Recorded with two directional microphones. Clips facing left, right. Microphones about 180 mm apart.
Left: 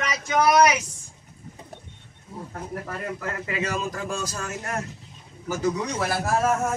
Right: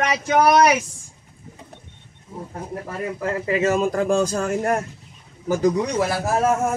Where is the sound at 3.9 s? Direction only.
55° right (ahead or behind).